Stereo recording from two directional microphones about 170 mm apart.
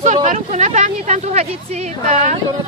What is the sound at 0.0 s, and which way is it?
Speech, 45° right (ahead or behind).